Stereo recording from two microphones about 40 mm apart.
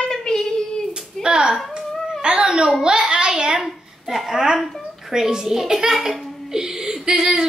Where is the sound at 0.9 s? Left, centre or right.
Centre.